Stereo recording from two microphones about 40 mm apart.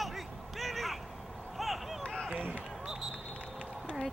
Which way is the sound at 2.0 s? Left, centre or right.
Left.